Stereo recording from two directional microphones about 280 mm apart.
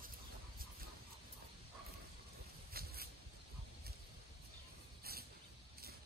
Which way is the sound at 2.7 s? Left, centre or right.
Right.